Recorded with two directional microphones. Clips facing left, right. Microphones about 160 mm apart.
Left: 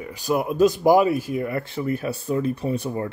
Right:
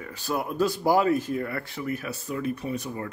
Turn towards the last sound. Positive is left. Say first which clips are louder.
# left 6 dB
turn(degrees=30)  # may be behind; listen again after turning